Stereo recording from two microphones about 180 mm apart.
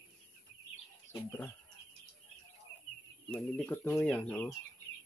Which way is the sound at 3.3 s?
10° left (ahead or behind).